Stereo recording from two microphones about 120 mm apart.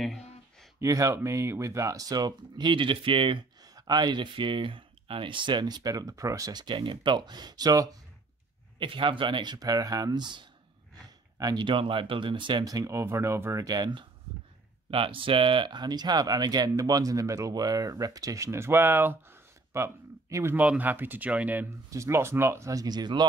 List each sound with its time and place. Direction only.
0.7 s speech: 25° right (ahead or behind)
8.7 s speech: 45° right (ahead or behind)
14.9 s speech: 45° right (ahead or behind); by 19.1 s 15° right (ahead or behind)
19.7 s a sound: 25° right (ahead or behind)
20.5 s speech: 10° right (ahead or behind)
21.9 s speech: 25° right (ahead or behind)